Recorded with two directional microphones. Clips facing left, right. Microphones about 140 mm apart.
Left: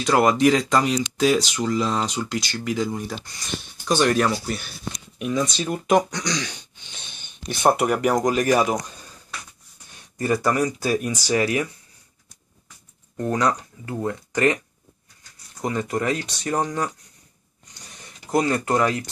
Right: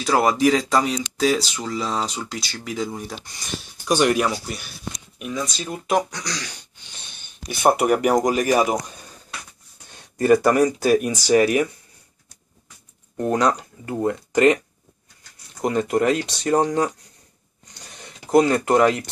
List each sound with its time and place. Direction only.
0.0 s speech: 5° right (ahead or behind)
3.8 s speech: 15° right (ahead or behind)
9.9 s speech: 25° right (ahead or behind)
13.3 s speech: 25° right (ahead or behind)
15.6 s speech: 20° right (ahead or behind)
18.2 s speech: 25° right (ahead or behind)